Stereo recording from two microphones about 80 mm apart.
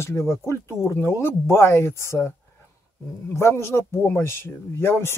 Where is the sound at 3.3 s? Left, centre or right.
Left.